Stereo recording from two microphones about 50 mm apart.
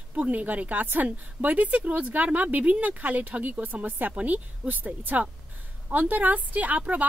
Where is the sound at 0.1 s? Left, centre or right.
Right.